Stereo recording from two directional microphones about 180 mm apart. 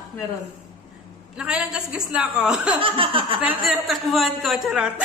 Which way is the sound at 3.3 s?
Centre (ahead or behind).